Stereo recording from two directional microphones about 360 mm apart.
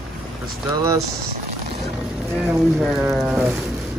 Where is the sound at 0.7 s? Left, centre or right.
Centre.